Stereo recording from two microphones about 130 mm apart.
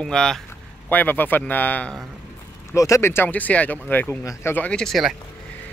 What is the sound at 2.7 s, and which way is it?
Speech, 25° left (ahead or behind).